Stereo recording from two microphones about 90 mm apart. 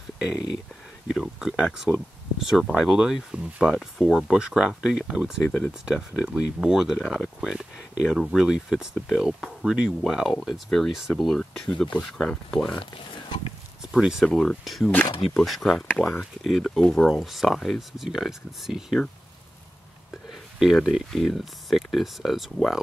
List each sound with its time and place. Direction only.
1.0 s speech: centre (ahead or behind)
5.4 s speech: 10° left (ahead or behind)
5.9 s speech: 10° right (ahead or behind); by 12.7 s 10° left (ahead or behind)
12.7 s speech: 65° left (ahead or behind)
13.9 s speech: 5° right (ahead or behind)
20.2 s speech: 5° right (ahead or behind)